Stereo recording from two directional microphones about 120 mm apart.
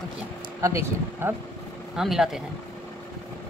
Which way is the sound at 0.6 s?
25° right (ahead or behind).